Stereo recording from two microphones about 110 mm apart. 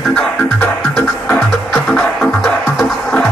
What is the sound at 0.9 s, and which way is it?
Music, 15° left (ahead or behind).